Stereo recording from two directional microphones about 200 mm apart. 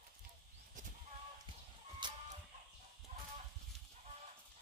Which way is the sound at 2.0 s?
20° right (ahead or behind).